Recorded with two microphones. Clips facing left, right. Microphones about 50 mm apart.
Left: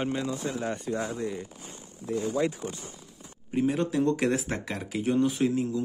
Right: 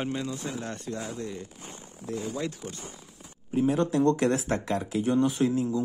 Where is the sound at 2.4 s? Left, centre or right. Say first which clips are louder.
Left 5 dB; centre.